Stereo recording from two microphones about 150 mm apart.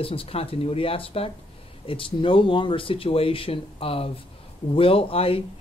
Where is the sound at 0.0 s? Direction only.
40° left (ahead or behind).